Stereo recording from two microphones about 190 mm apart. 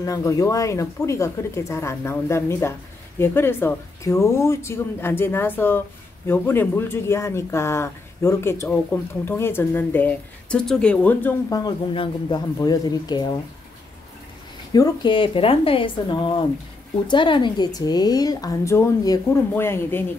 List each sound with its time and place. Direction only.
0.0 s speech: 20° left (ahead or behind)
14.7 s a woman's voice: 20° left (ahead or behind)